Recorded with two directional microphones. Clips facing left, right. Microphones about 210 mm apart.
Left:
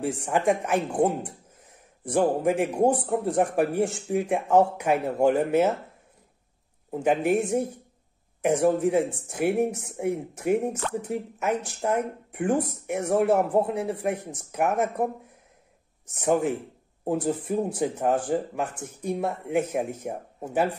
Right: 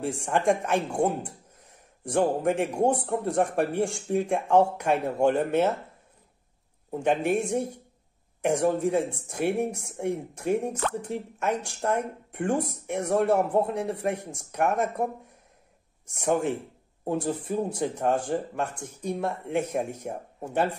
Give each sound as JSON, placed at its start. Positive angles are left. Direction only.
{"t": 0.0, "sound": "a man's voice", "side_deg": 5}
{"t": 6.9, "sound": "a man's voice", "side_deg": 5}
{"t": 8.6, "sound": "a man's voice", "side_deg": 5}
{"t": 16.3, "sound": "a man's voice", "side_deg": 5}